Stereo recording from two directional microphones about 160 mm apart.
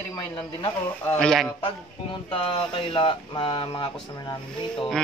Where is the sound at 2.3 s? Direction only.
35° left (ahead or behind).